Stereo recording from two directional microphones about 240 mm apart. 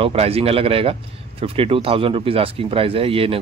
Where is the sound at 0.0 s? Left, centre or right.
Right.